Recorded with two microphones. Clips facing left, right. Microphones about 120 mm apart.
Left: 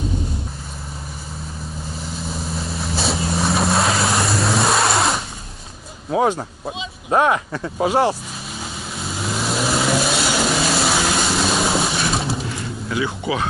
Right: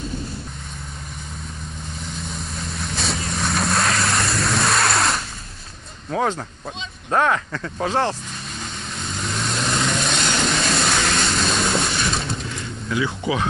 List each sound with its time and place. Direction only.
2.0 s vehicle: 5° left (ahead or behind)
6.0 s speech: 15° left (ahead or behind)
9.0 s vehicle: 5° left (ahead or behind)